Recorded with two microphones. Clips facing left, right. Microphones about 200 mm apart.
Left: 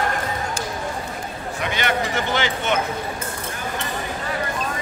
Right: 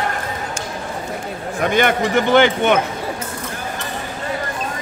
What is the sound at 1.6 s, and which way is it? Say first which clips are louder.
Speech: right 7 dB; 50° right (ahead or behind).